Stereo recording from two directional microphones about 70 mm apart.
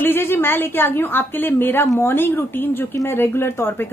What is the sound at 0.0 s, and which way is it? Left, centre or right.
A woman's voice, left.